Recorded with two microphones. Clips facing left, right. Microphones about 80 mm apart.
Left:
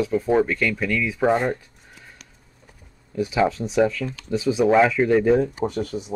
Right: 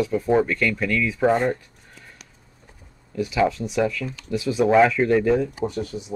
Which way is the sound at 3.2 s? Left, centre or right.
Left.